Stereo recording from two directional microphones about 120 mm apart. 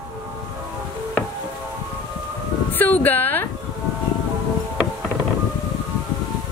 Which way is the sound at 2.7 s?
15° left (ahead or behind).